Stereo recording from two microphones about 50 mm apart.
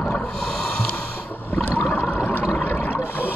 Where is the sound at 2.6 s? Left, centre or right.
Left.